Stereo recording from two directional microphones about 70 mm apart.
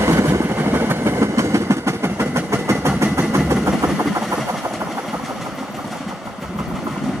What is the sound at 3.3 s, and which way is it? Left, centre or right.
Vehicle, right.